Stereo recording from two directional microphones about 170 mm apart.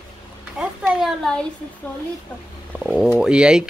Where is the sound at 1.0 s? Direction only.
5° left (ahead or behind).